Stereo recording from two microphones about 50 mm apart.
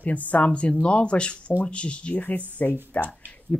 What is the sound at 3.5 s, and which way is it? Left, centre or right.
Speech, centre.